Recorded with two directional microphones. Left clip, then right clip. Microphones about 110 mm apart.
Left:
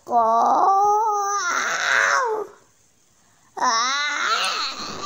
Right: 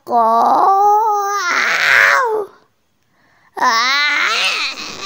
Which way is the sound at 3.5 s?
40° right (ahead or behind).